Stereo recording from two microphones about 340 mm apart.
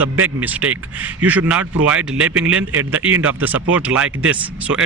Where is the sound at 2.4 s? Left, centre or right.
Right.